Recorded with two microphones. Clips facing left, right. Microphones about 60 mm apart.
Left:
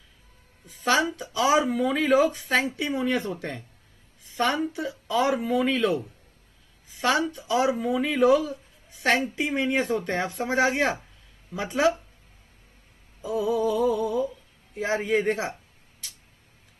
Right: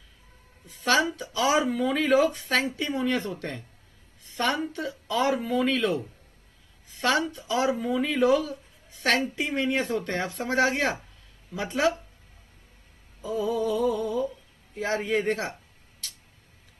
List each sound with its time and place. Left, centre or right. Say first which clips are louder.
0.7 s speech: even; centre
13.2 s music: left 2 dB; centre
14.8 s a man's voice: left 2 dB; centre